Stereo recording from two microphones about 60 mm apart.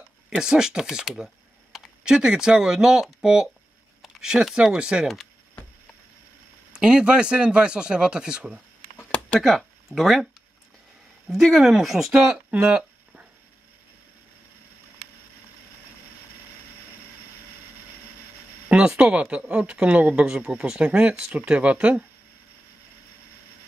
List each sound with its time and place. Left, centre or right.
0.4 s speech: centre
5.0 s speech: centre
6.7 s speech: centre
8.9 s a sound: centre
9.4 s speech: centre
11.2 s speech: centre
12.5 s a sound: centre
18.7 s speech: centre